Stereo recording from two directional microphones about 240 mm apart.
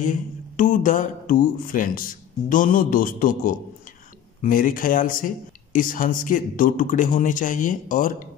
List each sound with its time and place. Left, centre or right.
0.0 s speech: left